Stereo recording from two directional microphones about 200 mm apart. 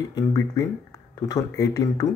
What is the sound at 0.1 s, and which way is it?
Speech, 15° left (ahead or behind).